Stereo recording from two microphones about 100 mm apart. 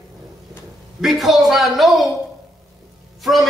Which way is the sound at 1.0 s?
Centre (ahead or behind).